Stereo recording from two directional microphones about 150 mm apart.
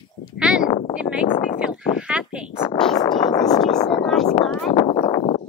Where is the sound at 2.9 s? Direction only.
30° left (ahead or behind).